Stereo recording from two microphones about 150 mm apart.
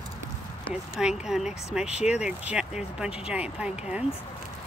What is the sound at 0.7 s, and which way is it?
Speech, 5° right (ahead or behind).